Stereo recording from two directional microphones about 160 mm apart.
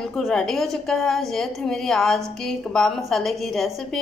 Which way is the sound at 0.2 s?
5° left (ahead or behind).